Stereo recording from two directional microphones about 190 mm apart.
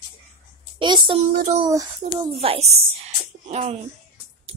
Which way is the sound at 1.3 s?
40° right (ahead or behind).